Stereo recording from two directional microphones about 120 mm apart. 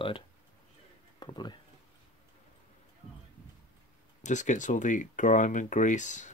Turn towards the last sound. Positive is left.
turn(degrees=90)